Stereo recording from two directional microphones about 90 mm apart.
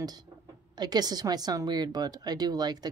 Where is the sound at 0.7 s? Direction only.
50° right (ahead or behind).